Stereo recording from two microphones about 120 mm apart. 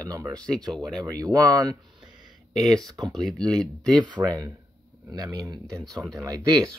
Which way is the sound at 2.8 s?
30° right (ahead or behind).